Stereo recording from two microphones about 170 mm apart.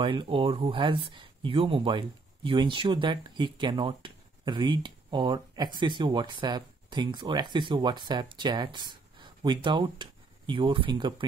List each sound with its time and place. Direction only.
0.0 s speech: 30° right (ahead or behind)